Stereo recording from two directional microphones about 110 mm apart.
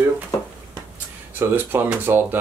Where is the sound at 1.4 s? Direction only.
20° right (ahead or behind).